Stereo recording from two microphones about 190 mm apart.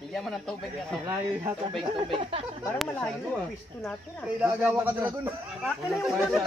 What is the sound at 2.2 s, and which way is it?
Speech, 30° right (ahead or behind).